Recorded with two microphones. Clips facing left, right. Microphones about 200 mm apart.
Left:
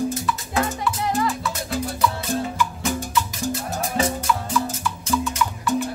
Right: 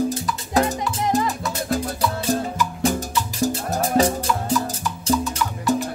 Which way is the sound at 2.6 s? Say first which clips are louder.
Right 3 dB; 35° right (ahead or behind).